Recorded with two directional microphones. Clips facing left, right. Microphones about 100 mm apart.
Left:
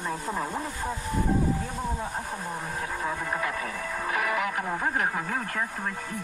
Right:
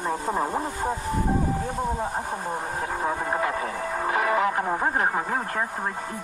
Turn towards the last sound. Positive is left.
turn(degrees=-35)  # may be behind; listen again after turning